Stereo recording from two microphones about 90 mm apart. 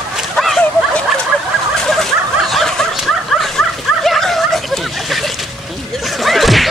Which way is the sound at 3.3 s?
5° left (ahead or behind).